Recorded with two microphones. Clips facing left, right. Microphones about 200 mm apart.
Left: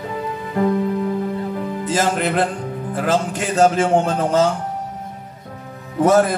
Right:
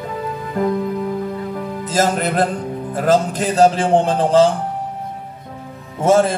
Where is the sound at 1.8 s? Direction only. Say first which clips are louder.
Right 2 dB; 40° right (ahead or behind).